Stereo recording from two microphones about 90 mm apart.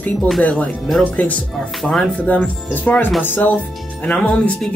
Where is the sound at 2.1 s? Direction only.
15° left (ahead or behind).